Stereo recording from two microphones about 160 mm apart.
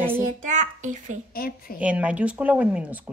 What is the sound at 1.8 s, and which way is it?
Speech, 10° right (ahead or behind).